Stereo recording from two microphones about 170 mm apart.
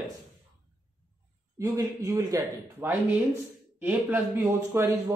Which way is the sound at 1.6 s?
20° right (ahead or behind).